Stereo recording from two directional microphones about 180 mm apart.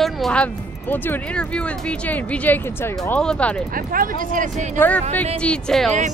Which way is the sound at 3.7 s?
50° right (ahead or behind).